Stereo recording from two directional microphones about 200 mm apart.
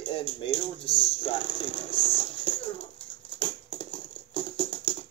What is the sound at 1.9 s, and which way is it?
Patter, 25° left (ahead or behind).